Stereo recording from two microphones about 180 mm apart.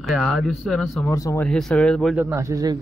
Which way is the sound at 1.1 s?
15° left (ahead or behind).